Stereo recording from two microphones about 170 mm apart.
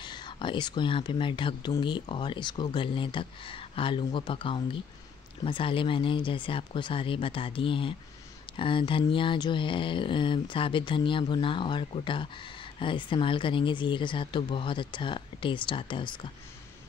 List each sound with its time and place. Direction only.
0.0 s speech: 25° left (ahead or behind)